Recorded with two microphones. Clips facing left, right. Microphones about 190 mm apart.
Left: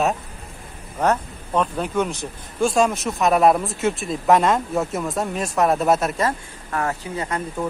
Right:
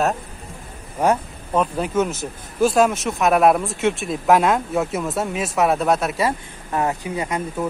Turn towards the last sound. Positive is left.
turn(degrees=-15)  # may be behind; listen again after turning